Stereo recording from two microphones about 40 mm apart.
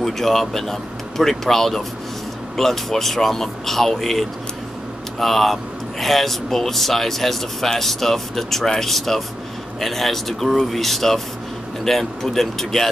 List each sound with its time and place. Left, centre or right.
0.0 s speech: centre